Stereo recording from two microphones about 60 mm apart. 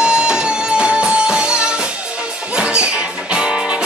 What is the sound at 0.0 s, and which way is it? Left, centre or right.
Music, centre.